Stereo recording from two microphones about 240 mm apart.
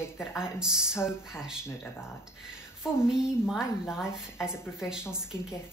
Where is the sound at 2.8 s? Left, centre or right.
Centre.